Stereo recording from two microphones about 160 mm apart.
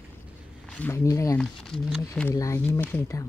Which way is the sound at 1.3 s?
5° left (ahead or behind).